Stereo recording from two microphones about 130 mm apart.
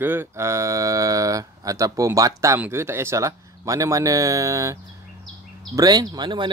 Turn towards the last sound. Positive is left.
turn(degrees=-35)  # may be behind; listen again after turning